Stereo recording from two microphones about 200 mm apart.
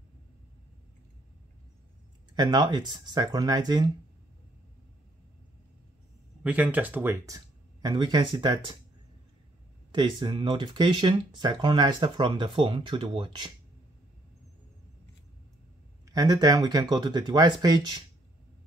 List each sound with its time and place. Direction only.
2.3 s speech: 20° right (ahead or behind)
6.4 s speech: 5° right (ahead or behind); by 8.7 s 25° right (ahead or behind)
9.9 s speech: 25° right (ahead or behind)
16.1 s speech: 20° right (ahead or behind)